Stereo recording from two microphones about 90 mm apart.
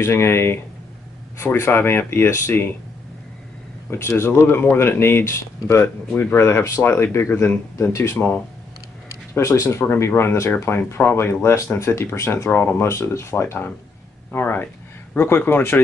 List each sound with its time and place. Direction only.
0.0 s speech: 30° left (ahead or behind)
3.9 s speech: 30° left (ahead or behind)
9.3 s speech: 35° left (ahead or behind); by 11.1 s 15° left (ahead or behind)
11.1 s speech: 30° left (ahead or behind)
12.8 s speech: 35° left (ahead or behind)